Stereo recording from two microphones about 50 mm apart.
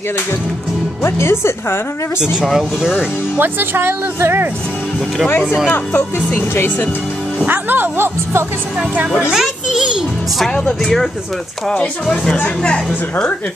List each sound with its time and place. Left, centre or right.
1.0 s speech: left
2.4 s speech: centre
3.3 s speech: right
5.7 s speech: left
7.4 s speech: right
9.3 s a child's voice: centre
11.7 s speech: left